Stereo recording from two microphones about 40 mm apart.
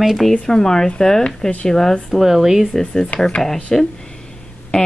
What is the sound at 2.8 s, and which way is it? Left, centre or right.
Speech, centre.